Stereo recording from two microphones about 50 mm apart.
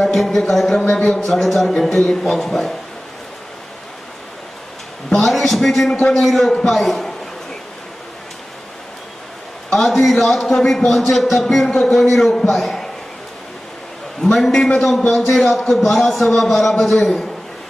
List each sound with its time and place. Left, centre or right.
0.0 s a man's voice: centre
1.2 s a man's voice: centre
5.1 s a man's voice: centre
9.7 s a man's voice: centre
14.2 s a man's voice: centre